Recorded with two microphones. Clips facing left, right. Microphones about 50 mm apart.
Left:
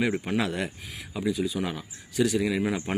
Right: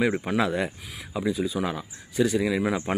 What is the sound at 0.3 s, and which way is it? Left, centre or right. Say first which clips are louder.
Speech: right 3 dB; centre.